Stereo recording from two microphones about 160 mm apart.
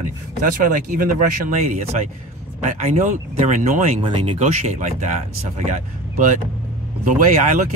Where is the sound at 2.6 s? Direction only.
50° right (ahead or behind).